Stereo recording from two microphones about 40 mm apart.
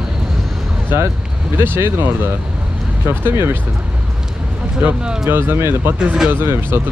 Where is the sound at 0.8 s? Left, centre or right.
Right.